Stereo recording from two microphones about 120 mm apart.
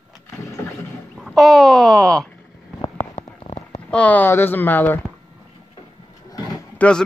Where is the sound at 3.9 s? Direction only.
10° left (ahead or behind).